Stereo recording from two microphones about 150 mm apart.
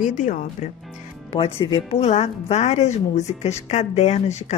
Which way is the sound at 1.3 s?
35° left (ahead or behind).